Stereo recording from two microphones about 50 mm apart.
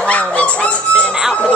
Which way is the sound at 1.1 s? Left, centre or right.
Centre.